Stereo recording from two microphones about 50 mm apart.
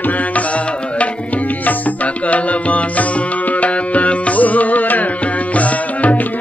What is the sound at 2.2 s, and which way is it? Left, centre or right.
Music, left.